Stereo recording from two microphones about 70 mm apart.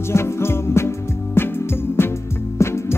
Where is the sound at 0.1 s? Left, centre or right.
Left.